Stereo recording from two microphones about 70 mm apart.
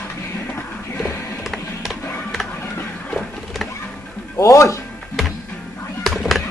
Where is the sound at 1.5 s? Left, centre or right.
Centre.